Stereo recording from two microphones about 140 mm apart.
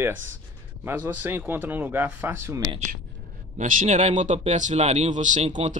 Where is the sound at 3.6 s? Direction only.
65° right (ahead or behind).